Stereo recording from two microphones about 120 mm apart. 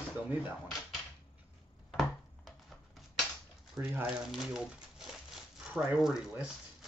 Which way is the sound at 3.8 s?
20° right (ahead or behind).